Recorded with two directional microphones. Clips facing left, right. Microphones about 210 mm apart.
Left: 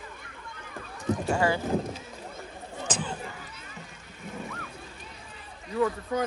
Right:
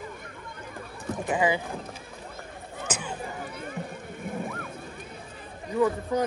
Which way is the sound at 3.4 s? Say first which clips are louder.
Right 10 dB; 55° right (ahead or behind).